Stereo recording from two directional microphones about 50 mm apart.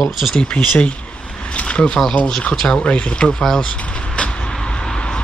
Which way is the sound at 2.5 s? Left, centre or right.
Centre.